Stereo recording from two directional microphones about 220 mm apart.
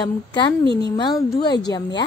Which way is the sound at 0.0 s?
20° left (ahead or behind).